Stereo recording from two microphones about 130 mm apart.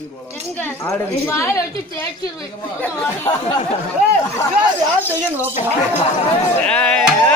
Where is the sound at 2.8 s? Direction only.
20° left (ahead or behind).